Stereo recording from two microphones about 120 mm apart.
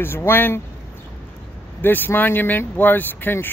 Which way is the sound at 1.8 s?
15° left (ahead or behind).